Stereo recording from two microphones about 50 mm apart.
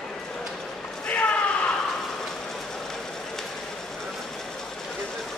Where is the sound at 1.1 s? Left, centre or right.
Left.